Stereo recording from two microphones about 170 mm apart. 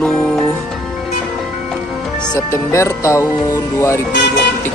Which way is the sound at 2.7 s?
15° left (ahead or behind).